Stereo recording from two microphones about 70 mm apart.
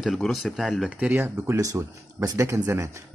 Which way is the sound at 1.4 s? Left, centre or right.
Right.